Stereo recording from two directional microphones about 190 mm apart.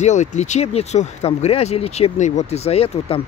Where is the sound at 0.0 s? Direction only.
40° left (ahead or behind).